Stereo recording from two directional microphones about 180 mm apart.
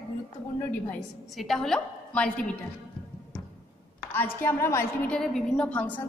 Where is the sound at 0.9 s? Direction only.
Centre (ahead or behind).